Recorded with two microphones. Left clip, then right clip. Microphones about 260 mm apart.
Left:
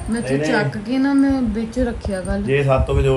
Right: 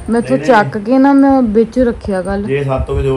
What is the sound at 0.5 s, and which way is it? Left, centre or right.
Speech, centre.